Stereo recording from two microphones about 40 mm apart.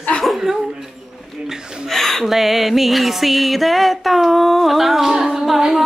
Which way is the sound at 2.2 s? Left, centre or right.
Centre.